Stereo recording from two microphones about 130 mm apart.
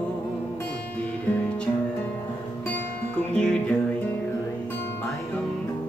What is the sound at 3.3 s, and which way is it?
Music, 10° left (ahead or behind).